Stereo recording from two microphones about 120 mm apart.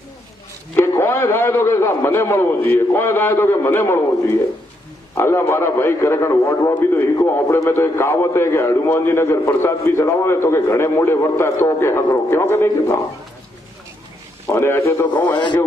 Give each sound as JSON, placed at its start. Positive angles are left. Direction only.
{"t": 0.7, "sound": "a man's voice", "side_deg": 20}
{"t": 14.5, "sound": "a man's voice", "side_deg": 20}
{"t": 15.2, "sound": "a man's voice", "side_deg": 40}